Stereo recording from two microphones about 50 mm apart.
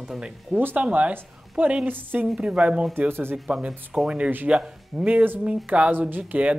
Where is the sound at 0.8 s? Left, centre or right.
Right.